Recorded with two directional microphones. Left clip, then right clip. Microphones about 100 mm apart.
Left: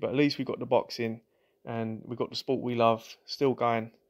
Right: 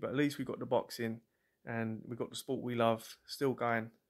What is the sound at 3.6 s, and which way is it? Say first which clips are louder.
Speech: left 7 dB; 35° left (ahead or behind).